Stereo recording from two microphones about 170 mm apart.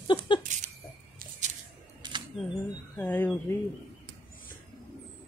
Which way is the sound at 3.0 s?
10° left (ahead or behind).